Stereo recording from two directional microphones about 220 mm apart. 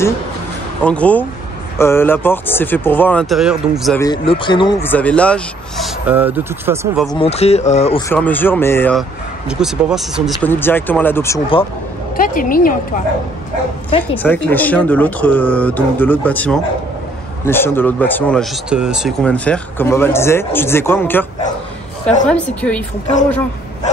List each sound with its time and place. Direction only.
0.8 s speech: 5° left (ahead or behind)
4.0 s speech: 20° left (ahead or behind)
4.8 s speech: 5° left (ahead or behind); by 6.9 s 10° right (ahead or behind)
7.2 s speech: 30° left (ahead or behind)
8.1 s speech: 10° left (ahead or behind)
9.5 s speech: 5° right (ahead or behind)
10.5 s speech: 10° left (ahead or behind)
12.2 s a woman's voice: 40° left (ahead or behind)
14.1 s speech: 10° left (ahead or behind)
22.3 s speech: 5° left (ahead or behind)